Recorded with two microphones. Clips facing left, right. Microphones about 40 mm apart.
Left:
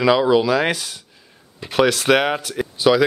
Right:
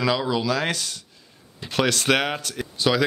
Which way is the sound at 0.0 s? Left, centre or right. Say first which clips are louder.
Left 8 dB; centre.